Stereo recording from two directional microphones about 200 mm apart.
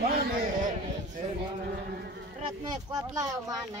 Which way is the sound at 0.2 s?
40° right (ahead or behind).